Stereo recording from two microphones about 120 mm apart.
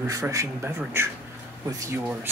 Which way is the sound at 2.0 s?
15° right (ahead or behind).